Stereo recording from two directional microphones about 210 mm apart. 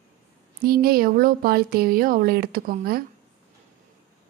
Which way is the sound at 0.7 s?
45° right (ahead or behind).